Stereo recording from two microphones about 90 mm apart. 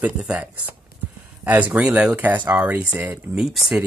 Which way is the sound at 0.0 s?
15° right (ahead or behind).